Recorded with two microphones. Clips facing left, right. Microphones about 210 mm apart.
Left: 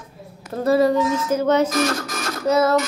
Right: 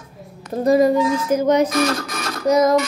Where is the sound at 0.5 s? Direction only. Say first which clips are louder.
Right 2 dB; 15° right (ahead or behind).